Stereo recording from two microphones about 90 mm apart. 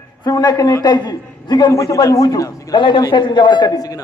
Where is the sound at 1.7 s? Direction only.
35° left (ahead or behind).